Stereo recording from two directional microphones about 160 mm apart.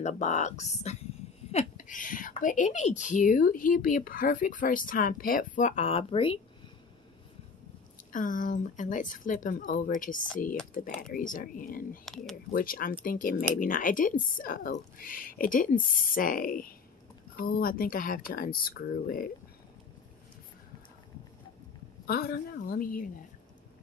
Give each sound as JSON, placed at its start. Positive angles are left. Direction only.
{"t": 0.0, "sound": "speech", "side_deg": 50}
{"t": 8.1, "sound": "speech", "side_deg": 55}
{"t": 12.0, "sound": "speech", "side_deg": 0}
{"t": 12.5, "sound": "speech", "side_deg": 65}
{"t": 22.0, "sound": "speech", "side_deg": 70}